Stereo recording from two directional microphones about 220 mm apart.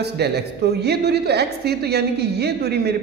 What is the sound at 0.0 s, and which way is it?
A woman's voice, 50° right (ahead or behind).